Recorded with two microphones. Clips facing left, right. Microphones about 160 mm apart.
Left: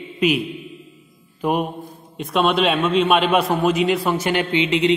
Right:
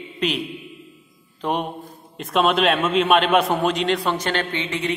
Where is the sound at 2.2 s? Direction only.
Centre (ahead or behind).